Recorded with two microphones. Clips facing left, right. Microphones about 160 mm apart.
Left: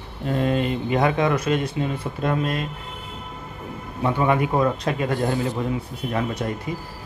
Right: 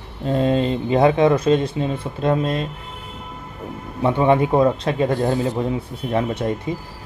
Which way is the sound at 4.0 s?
25° right (ahead or behind).